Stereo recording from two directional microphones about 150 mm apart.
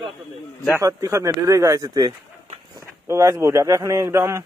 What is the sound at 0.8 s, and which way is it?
A man's voice, 20° right (ahead or behind).